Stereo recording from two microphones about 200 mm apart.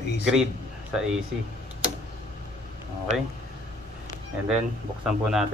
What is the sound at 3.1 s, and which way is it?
Speech, 35° right (ahead or behind).